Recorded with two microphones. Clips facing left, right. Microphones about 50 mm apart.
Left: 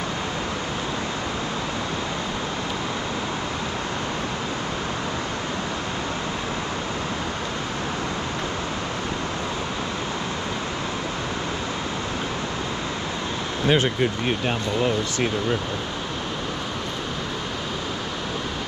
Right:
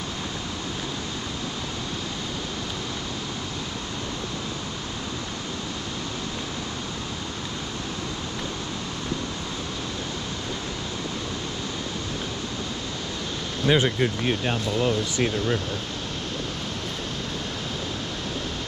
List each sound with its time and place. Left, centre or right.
13.7 s speech: left